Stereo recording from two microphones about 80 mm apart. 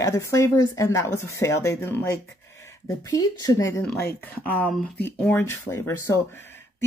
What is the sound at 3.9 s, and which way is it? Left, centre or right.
Speech, left.